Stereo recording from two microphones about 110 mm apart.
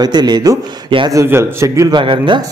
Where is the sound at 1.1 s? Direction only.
25° right (ahead or behind).